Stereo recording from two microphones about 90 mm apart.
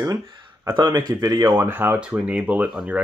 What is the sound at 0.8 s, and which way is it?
Speech, 50° right (ahead or behind).